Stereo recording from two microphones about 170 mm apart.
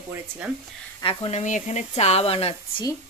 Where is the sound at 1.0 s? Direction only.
30° left (ahead or behind).